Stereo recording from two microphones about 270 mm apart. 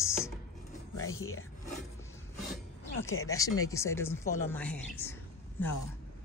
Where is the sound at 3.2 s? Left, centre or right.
Centre.